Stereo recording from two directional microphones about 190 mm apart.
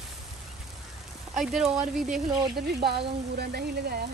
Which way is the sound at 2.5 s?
55° right (ahead or behind).